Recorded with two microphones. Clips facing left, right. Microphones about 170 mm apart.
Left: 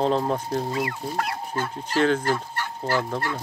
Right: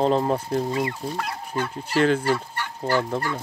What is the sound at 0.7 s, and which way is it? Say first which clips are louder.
Speech: right 2 dB; 20° right (ahead or behind).